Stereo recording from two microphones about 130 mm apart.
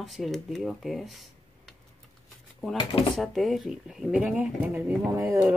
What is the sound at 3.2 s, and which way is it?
Speech, centre (ahead or behind).